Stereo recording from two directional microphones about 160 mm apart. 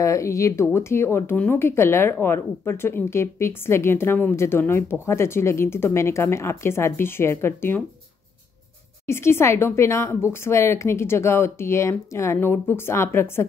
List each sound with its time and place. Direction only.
0.0 s speech: 20° left (ahead or behind)
9.0 s speech: 15° left (ahead or behind)